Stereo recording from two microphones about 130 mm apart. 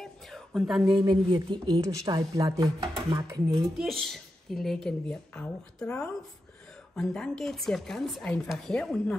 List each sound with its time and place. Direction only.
0.5 s a woman's voice: 5° right (ahead or behind)
0.9 s a woman's voice: 35° right (ahead or behind)
1.8 s speech: 25° right (ahead or behind)
3.7 s a woman's voice: centre (ahead or behind)